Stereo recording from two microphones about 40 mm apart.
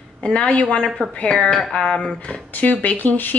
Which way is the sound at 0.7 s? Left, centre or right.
Centre.